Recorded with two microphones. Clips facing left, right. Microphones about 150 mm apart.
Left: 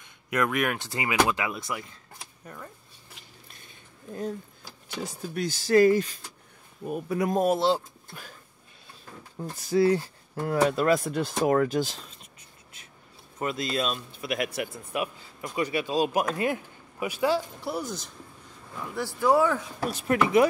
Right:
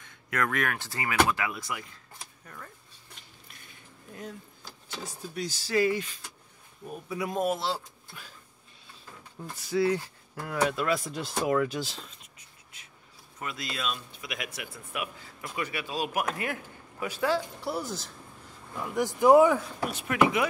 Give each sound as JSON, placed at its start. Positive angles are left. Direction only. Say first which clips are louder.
{"t": 0.0, "sound": "speech", "louder": "left 4 dB", "side_deg": 15}
{"t": 5.3, "sound": "speech", "louder": "left 7 dB", "side_deg": 55}
{"t": 7.5, "sound": "speech", "louder": "left 8 dB", "side_deg": 25}
{"t": 8.1, "sound": "speech", "louder": "left 4 dB", "side_deg": 45}
{"t": 9.6, "sound": "speech", "louder": "left 4 dB", "side_deg": 40}
{"t": 13.4, "sound": "speech", "louder": "left 8 dB", "side_deg": 35}
{"t": 14.9, "sound": "speech", "louder": "left 6 dB", "side_deg": 30}
{"t": 17.6, "sound": "speech", "louder": "left 1 dB", "side_deg": -5}
{"t": 18.9, "sound": "speech", "louder": "right 4 dB", "side_deg": -15}
{"t": 19.8, "sound": "speech", "louder": "left 5 dB", "side_deg": 35}